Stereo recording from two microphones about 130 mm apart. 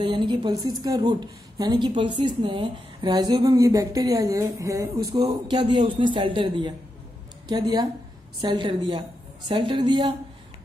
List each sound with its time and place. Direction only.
0.0 s a woman's voice: 40° right (ahead or behind)